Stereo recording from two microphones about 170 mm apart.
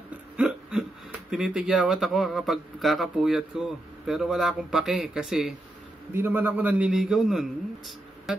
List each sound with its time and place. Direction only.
0.4 s hiccup: 5° right (ahead or behind)
1.3 s speech: 5° right (ahead or behind)